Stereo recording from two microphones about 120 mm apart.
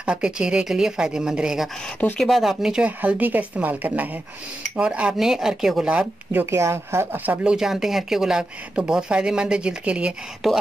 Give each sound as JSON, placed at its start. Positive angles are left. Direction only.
{"t": 0.0, "sound": "speech", "side_deg": -10}
{"t": 6.4, "sound": "speech", "side_deg": -20}
{"t": 7.4, "sound": "speech", "side_deg": -5}